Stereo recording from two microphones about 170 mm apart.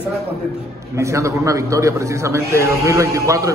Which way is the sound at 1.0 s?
15° right (ahead or behind).